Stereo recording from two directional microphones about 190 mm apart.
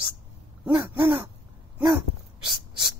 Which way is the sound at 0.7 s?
10° right (ahead or behind).